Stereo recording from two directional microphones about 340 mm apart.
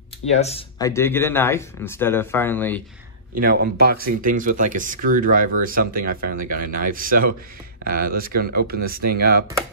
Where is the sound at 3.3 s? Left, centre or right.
Right.